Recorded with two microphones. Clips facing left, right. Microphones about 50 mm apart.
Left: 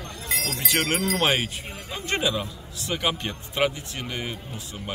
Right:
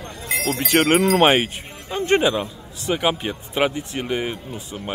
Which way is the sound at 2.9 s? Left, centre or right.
Centre.